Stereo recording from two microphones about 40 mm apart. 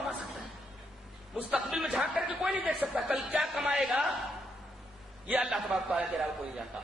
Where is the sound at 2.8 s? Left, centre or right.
Centre.